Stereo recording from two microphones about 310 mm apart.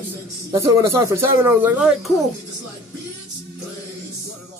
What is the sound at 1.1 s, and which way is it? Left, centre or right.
A man's voice, centre.